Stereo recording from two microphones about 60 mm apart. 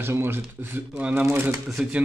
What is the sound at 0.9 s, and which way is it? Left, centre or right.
Speech, right.